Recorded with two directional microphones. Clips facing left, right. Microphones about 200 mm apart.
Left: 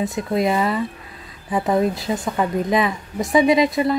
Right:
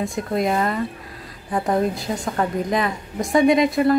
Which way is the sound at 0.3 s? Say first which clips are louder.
Left 2 dB; centre (ahead or behind).